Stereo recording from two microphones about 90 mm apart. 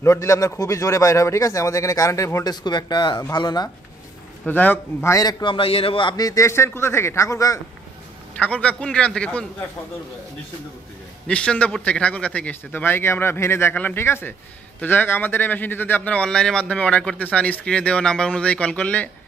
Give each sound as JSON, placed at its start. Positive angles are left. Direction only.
{"t": 0.0, "sound": "speech", "side_deg": 35}
{"t": 2.5, "sound": "speech", "side_deg": 55}
{"t": 4.5, "sound": "a man's voice", "side_deg": 20}
{"t": 5.0, "sound": "speech", "side_deg": 35}
{"t": 5.4, "sound": "a man's voice", "side_deg": 80}
{"t": 6.1, "sound": "speech", "side_deg": 40}
{"t": 8.4, "sound": "a man's voice", "side_deg": 15}
{"t": 11.2, "sound": "a man's voice", "side_deg": 15}